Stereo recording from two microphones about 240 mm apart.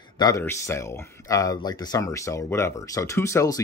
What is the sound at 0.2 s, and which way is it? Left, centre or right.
A man's voice, centre.